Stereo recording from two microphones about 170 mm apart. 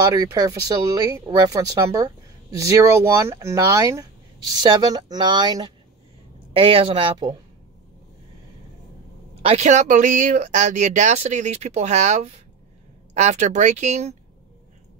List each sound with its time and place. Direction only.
0.1 s speech: 20° right (ahead or behind)
9.4 s speech: 40° right (ahead or behind)